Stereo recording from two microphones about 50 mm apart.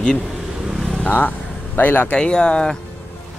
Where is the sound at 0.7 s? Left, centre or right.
Centre.